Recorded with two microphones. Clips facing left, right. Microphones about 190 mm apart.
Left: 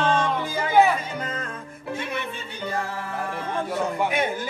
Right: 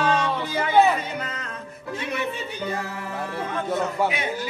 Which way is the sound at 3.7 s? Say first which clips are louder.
Right 2 dB; 10° left (ahead or behind).